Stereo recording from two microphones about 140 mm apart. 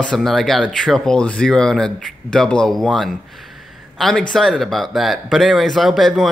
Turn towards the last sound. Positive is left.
turn(degrees=0)  # may be behind; listen again after turning